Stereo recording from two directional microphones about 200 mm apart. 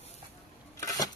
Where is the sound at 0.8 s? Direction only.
15° left (ahead or behind).